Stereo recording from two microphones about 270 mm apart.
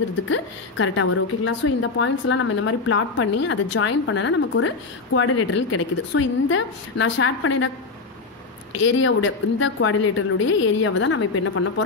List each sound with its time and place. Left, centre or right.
0.3 s a woman's voice: left
8.8 s a woman's voice: left